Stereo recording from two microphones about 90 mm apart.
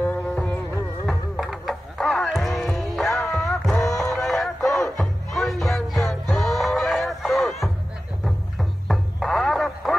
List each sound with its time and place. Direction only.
0.0 s music: 15° left (ahead or behind)
1.0 s music: centre (ahead or behind)